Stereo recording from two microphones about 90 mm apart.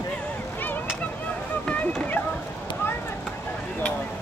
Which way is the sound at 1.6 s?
15° left (ahead or behind).